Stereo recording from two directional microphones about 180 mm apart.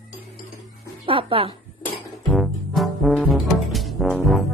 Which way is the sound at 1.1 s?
30° right (ahead or behind).